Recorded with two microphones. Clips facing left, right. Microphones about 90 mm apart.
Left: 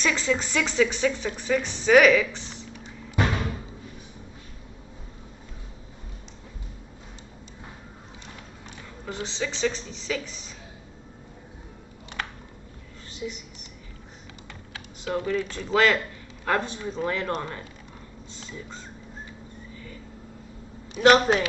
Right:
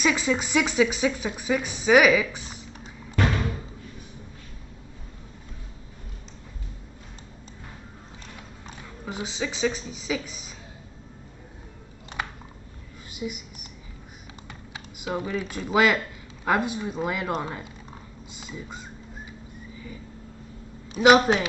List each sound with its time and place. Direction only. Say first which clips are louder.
0.0 s speech: right 1 dB; 10° right (ahead or behind)
3.2 s music: right 1 dB; 20° left (ahead or behind)
9.0 s speech: even; 5° right (ahead or behind)
13.1 s whispering: right 1 dB; 10° right (ahead or behind)
14.7 s speech: left 1 dB; 15° right (ahead or behind)
19.7 s a sound: right 3 dB; 10° right (ahead or behind)
20.9 s speech: right 1 dB; 5° right (ahead or behind)